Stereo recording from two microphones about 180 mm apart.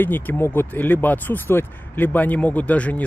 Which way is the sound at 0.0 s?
10° left (ahead or behind).